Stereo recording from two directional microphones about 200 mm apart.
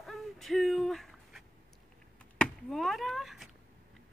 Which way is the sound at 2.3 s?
5° left (ahead or behind).